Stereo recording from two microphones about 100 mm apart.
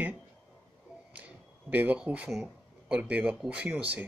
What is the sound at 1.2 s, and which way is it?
Speech, 15° right (ahead or behind).